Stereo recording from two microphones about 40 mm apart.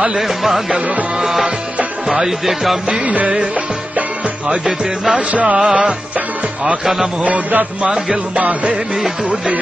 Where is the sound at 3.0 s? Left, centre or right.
Right.